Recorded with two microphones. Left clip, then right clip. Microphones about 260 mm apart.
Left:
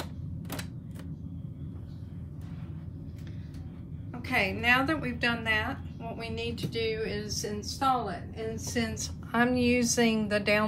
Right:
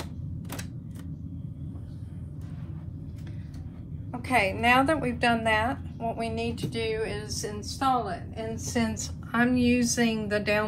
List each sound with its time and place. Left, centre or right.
4.1 s a woman's voice: centre
9.3 s a woman's voice: centre